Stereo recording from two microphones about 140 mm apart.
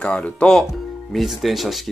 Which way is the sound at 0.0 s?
10° left (ahead or behind).